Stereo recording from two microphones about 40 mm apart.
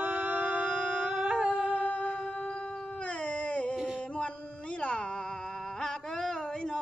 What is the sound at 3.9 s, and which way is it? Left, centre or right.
Music, left.